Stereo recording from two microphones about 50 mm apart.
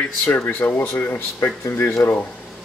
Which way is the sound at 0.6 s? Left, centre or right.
Left.